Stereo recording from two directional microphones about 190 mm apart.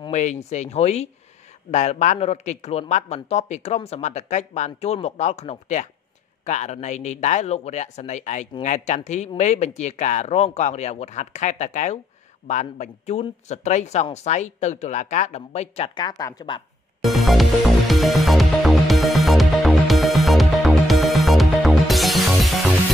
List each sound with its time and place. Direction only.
0.1 s a man's voice: 40° left (ahead or behind); by 16.6 s 25° left (ahead or behind)
17.0 s music: centre (ahead or behind)